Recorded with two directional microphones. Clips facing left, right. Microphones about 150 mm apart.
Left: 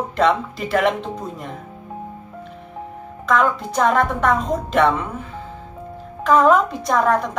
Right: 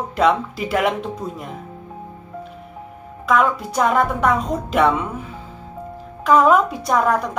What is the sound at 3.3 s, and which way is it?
Speech, 5° right (ahead or behind).